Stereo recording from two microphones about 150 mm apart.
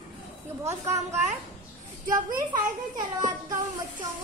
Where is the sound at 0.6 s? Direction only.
20° right (ahead or behind).